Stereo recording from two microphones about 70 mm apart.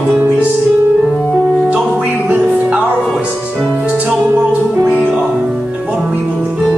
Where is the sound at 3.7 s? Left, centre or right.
Right.